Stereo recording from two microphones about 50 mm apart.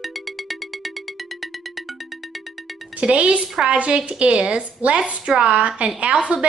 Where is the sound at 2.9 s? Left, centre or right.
Right.